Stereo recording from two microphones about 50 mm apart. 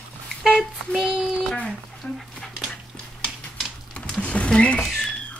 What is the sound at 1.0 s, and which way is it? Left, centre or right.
Speech, centre.